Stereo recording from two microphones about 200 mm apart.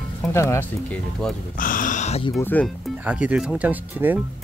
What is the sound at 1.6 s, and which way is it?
Speech, 40° left (ahead or behind).